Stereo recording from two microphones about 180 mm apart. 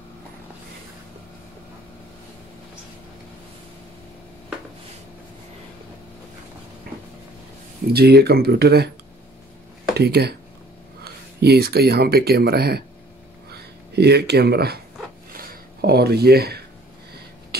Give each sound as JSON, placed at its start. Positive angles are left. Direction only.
{"t": 7.9, "sound": "speech", "side_deg": -60}
{"t": 9.9, "sound": "speech", "side_deg": -65}
{"t": 11.4, "sound": "speech", "side_deg": -60}
{"t": 15.3, "sound": "a sound", "side_deg": -55}